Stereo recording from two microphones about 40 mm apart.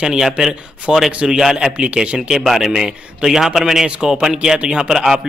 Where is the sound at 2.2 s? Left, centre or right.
Centre.